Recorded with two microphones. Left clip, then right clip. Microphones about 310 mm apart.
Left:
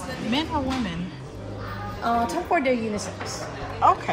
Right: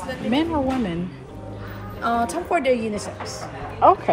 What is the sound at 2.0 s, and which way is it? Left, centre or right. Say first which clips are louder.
Speech: right 1 dB; right.